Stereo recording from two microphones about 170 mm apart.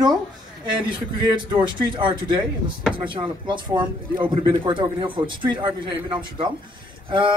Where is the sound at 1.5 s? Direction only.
25° right (ahead or behind).